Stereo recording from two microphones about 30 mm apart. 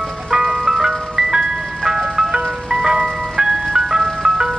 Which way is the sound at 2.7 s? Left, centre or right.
Centre.